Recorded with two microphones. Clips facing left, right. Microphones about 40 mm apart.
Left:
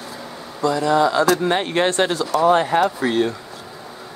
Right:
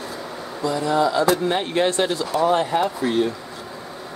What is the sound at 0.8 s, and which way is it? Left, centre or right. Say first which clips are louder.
Speech: left 2 dB; left.